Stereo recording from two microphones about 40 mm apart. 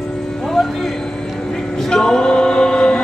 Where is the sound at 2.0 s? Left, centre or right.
Left.